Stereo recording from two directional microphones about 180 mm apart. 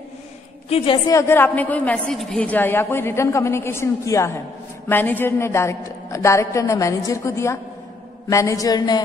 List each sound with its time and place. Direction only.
1.0 s a woman's voice: 15° left (ahead or behind)